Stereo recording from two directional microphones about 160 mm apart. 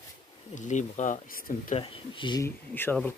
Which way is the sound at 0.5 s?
50° left (ahead or behind).